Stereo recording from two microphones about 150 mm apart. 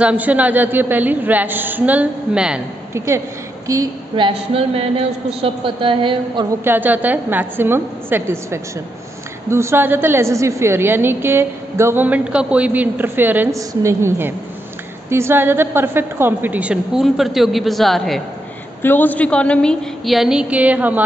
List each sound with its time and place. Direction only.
0.0 s a woman's voice: 10° right (ahead or behind)
3.6 s a woman's voice: 20° right (ahead or behind)
4.1 s a man's voice: 40° right (ahead or behind)
6.6 s a woman's voice: 10° right (ahead or behind)
18.8 s a woman's voice: 15° left (ahead or behind); by 21.0 s 10° right (ahead or behind)